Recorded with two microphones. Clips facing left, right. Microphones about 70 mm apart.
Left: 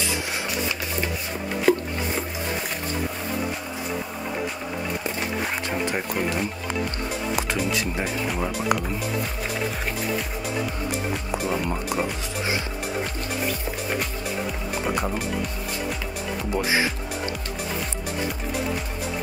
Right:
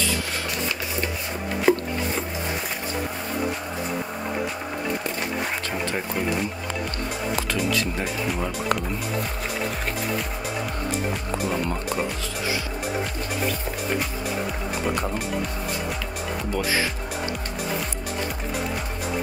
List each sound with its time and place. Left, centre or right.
1.7 s a sound: centre
7.3 s speech: centre
11.5 s speech: centre
16.5 s speech: centre